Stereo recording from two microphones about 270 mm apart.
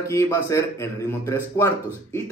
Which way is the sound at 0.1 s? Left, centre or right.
Centre.